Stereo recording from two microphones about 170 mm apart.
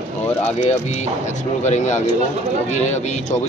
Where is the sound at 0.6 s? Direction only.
45° left (ahead or behind).